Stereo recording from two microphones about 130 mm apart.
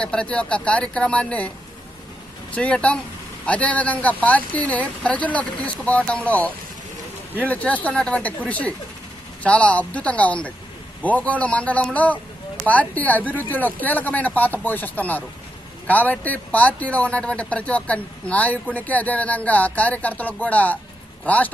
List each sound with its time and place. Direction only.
0.0 s speech: 10° left (ahead or behind)
2.5 s speech: 10° left (ahead or behind)